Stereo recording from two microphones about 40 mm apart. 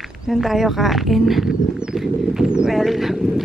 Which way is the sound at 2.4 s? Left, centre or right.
Right.